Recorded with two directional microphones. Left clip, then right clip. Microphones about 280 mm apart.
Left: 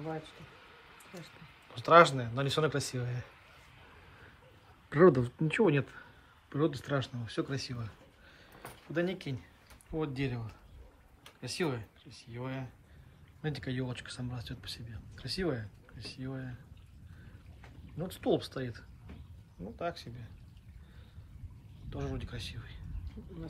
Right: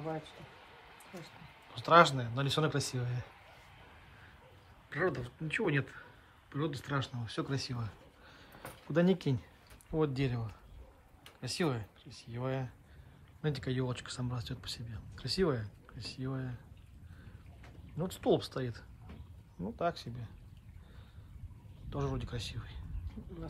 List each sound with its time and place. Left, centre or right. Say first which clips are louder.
0.0 s a sound: even; right
1.7 s speech: left 2 dB; centre
4.8 s speech: left 10 dB; centre
8.9 s speech: right 4 dB; centre
17.9 s speech: right 1 dB; centre
21.9 s speech: right 2 dB; centre